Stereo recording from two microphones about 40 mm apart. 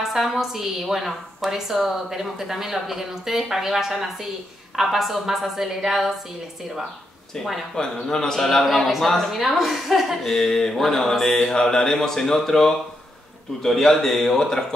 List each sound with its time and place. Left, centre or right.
0.0 s a woman's voice: centre
7.3 s speech: centre
7.7 s mantra: centre
8.4 s a woman's voice: centre
10.3 s mantra: centre